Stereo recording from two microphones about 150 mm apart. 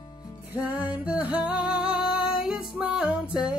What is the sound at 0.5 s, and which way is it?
Music, 10° right (ahead or behind).